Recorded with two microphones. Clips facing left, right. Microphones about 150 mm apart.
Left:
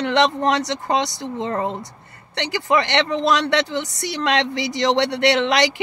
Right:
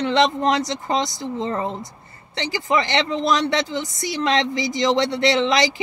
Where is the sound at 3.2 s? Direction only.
70° left (ahead or behind).